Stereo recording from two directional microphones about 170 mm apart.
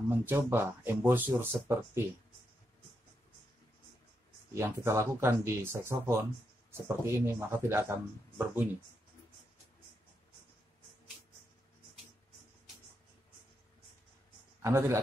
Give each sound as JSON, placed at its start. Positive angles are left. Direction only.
{"t": 0.1, "sound": "speech", "side_deg": -10}
{"t": 4.6, "sound": "speech", "side_deg": -15}
{"t": 14.6, "sound": "a man's voice", "side_deg": -15}